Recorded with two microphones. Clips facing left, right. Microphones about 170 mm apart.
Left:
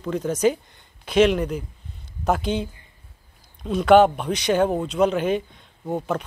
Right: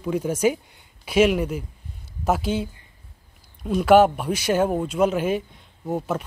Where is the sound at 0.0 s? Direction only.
10° right (ahead or behind).